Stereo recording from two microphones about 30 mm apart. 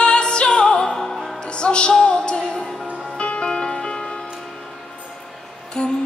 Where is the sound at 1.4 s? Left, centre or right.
Left.